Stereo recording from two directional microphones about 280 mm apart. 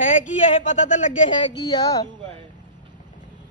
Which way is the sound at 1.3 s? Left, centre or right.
Centre.